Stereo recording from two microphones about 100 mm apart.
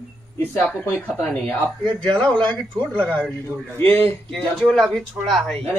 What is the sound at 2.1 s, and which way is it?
Speech, 10° left (ahead or behind).